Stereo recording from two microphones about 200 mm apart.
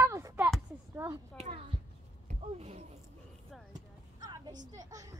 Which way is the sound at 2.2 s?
35° right (ahead or behind).